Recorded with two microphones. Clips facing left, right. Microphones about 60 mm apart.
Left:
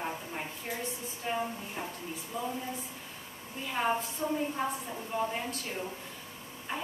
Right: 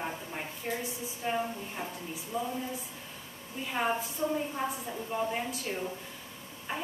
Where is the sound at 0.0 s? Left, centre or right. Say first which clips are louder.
Even; centre.